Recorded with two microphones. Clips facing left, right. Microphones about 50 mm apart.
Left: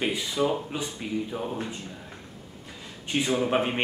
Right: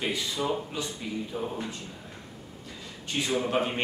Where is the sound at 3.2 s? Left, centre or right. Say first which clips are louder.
Left 2 dB; left.